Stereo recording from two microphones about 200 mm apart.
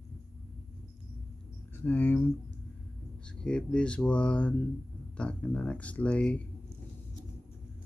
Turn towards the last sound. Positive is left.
turn(degrees=5)  # may be behind; listen again after turning